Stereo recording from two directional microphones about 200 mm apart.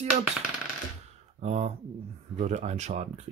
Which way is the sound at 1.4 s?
35° right (ahead or behind).